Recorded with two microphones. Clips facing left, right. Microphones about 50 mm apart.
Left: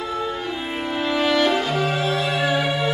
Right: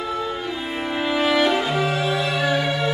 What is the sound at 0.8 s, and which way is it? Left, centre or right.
Music, centre.